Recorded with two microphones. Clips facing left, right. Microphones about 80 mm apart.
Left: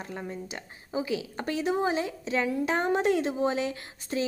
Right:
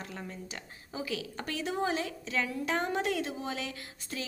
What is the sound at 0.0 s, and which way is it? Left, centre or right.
A woman's voice, left.